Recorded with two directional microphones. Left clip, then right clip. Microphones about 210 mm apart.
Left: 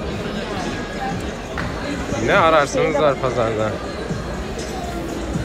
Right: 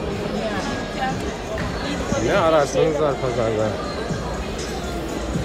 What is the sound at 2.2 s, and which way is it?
Speech, 15° right (ahead or behind).